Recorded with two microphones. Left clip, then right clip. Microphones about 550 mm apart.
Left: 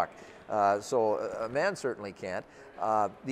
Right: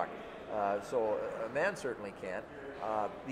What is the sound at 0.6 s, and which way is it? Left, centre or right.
Speech, left.